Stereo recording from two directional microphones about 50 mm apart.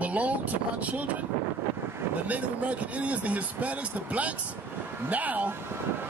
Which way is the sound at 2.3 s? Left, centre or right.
Right.